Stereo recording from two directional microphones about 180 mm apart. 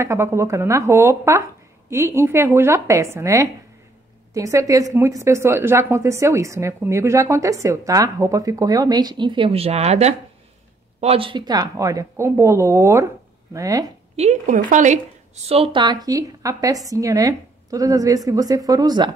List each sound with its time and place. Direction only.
0.0 s a woman's voice: 15° right (ahead or behind)
14.1 s a woman's voice: 40° right (ahead or behind); by 19.1 s 25° right (ahead or behind)